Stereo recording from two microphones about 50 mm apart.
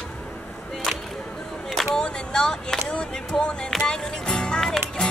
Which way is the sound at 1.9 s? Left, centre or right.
Centre.